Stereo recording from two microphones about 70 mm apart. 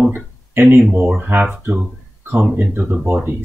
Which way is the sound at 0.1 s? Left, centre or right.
Right.